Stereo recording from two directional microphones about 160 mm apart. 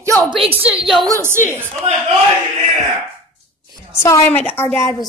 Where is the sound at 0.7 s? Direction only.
5° right (ahead or behind).